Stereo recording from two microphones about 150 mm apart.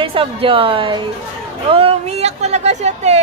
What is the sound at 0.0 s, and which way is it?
A woman's voice, 35° right (ahead or behind).